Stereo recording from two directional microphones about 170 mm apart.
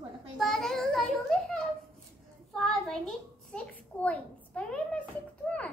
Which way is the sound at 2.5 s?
Centre (ahead or behind).